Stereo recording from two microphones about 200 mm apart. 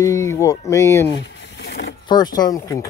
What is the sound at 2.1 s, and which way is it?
Speech, 20° left (ahead or behind).